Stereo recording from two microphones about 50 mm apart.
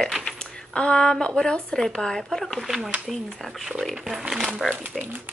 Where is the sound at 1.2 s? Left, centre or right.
Centre.